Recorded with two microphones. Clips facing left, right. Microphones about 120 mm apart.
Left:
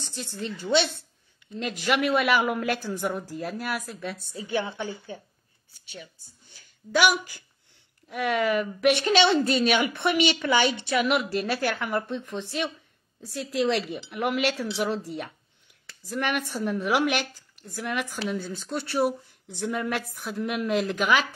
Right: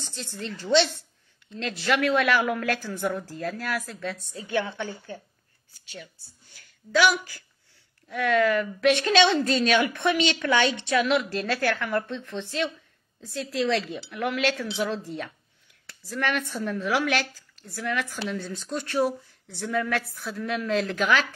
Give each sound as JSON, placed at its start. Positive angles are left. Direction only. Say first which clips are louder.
{"t": 0.1, "sound": "a woman's voice", "louder": "left 2 dB", "side_deg": 15}